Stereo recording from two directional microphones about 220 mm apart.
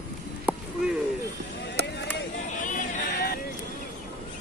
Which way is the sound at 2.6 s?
35° left (ahead or behind).